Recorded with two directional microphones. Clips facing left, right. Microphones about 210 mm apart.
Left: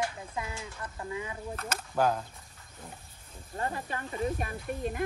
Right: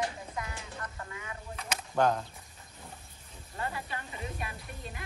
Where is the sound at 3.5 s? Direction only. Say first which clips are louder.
Left 3 dB; 40° left (ahead or behind).